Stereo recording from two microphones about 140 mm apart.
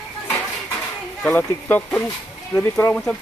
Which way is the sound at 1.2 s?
15° left (ahead or behind).